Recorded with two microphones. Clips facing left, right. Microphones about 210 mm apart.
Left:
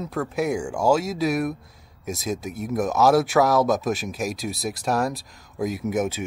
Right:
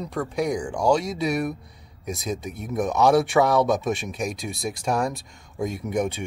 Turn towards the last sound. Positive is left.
turn(degrees=5)  # may be behind; listen again after turning